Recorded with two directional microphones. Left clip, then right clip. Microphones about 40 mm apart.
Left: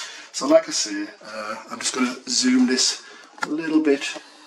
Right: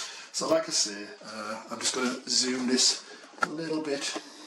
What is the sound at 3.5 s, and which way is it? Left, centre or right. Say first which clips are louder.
Speech: left 11 dB; left.